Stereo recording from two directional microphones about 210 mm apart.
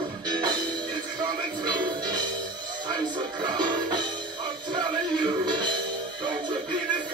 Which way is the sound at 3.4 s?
20° right (ahead or behind).